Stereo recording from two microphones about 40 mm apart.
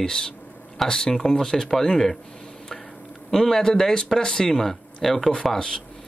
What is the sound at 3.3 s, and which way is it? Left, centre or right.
Speech, centre.